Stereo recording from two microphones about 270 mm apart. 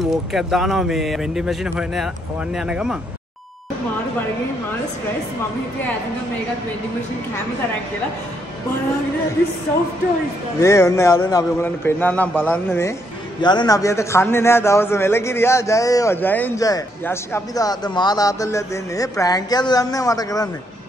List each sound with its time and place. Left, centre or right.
0.1 s speech: centre
10.6 s a man's voice: centre